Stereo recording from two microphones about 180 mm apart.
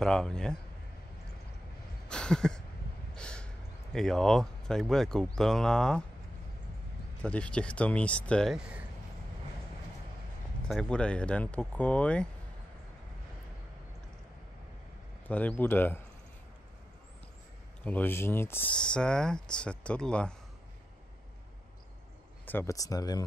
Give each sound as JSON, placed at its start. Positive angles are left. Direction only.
{"t": 0.0, "sound": "speech", "side_deg": 5}
{"t": 2.0, "sound": "a sound", "side_deg": 5}
{"t": 3.9, "sound": "speech", "side_deg": 0}
{"t": 7.2, "sound": "speech", "side_deg": 5}
{"t": 10.7, "sound": "speech", "side_deg": 5}
{"t": 15.2, "sound": "speech", "side_deg": 10}
{"t": 17.8, "sound": "speech", "side_deg": 10}
{"t": 22.4, "sound": "speech", "side_deg": 10}